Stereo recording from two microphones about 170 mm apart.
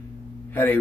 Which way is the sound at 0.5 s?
10° left (ahead or behind).